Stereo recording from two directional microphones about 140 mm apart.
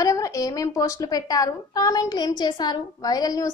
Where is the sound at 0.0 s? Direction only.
25° left (ahead or behind).